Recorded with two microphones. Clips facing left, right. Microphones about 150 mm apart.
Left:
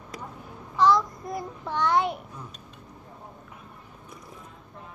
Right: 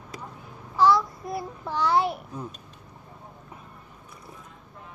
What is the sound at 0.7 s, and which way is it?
Child singing, 5° right (ahead or behind).